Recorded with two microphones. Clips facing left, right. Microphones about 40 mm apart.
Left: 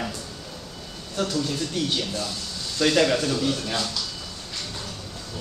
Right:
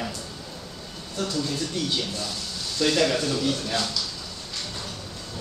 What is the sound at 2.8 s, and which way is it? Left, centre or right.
A man's voice, centre.